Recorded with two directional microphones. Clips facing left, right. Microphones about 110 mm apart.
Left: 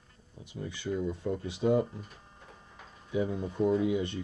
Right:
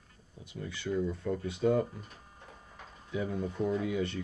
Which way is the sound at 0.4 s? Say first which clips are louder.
Left 1 dB; 20° left (ahead or behind).